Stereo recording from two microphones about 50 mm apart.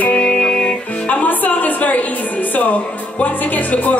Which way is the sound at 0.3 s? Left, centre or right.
Centre.